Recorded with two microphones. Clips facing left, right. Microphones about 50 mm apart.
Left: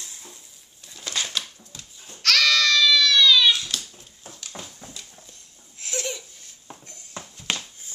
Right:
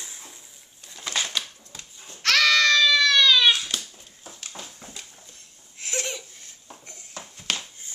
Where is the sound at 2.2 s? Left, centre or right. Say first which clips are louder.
Right 1 dB; right.